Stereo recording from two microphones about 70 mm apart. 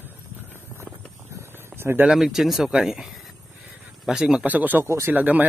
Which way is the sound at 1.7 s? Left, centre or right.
Right.